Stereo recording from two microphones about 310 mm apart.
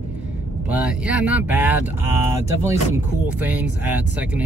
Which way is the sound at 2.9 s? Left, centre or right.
Centre.